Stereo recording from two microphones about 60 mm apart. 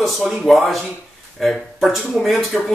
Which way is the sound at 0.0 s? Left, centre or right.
Centre.